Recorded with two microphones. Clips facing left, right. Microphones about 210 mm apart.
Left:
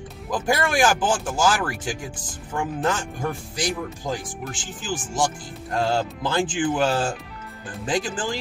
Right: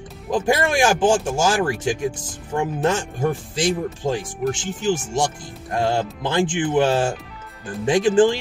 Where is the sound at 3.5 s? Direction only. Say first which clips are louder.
Right 6 dB; 25° right (ahead or behind).